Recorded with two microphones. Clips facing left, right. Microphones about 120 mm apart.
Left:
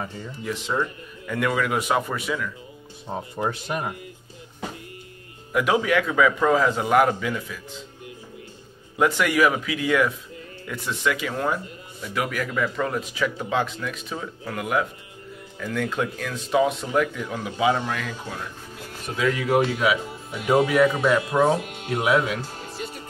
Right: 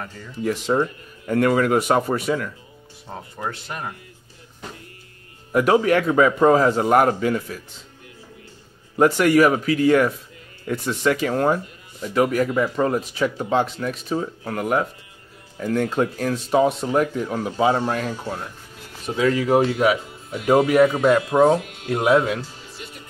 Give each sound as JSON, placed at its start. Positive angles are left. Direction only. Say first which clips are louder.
{"t": 0.4, "sound": "speech", "louder": "right 7 dB", "side_deg": -45}
{"t": 0.7, "sound": "speech", "louder": "right 4 dB", "side_deg": -35}
{"t": 1.3, "sound": "speech", "louder": "right 6 dB", "side_deg": -45}
{"t": 3.1, "sound": "speech", "louder": "left 3 dB", "side_deg": 15}
{"t": 5.5, "sound": "speech", "louder": "right 4 dB", "side_deg": -40}
{"t": 8.9, "sound": "speech", "louder": "right 6 dB", "side_deg": -40}
{"t": 22.5, "sound": "music", "louder": "left 5 dB", "side_deg": 50}